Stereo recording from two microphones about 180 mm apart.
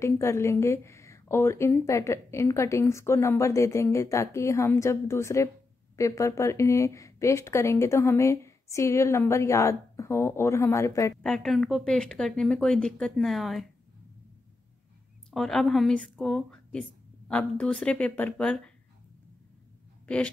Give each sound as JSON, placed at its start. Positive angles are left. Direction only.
{"t": 0.0, "sound": "a woman's voice", "side_deg": 15}
{"t": 11.2, "sound": "a woman's voice", "side_deg": 0}
{"t": 15.3, "sound": "a woman's voice", "side_deg": 0}